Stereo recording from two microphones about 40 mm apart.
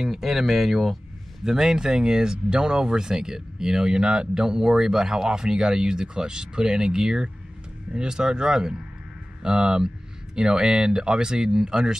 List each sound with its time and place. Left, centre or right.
0.0 s speech: centre